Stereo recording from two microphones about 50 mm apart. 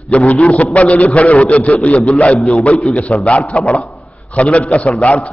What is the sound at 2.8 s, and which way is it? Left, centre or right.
A man's voice, left.